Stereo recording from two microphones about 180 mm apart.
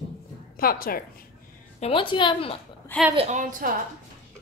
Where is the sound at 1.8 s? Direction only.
30° left (ahead or behind).